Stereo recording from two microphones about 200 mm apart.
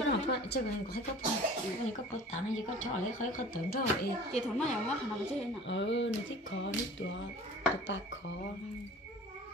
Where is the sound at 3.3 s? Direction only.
45° left (ahead or behind).